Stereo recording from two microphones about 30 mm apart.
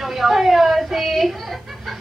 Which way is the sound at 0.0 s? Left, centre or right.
Centre.